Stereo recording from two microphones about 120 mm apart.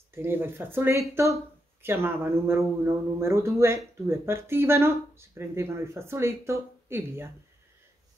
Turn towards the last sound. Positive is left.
turn(degrees=-20)  # may be behind; listen again after turning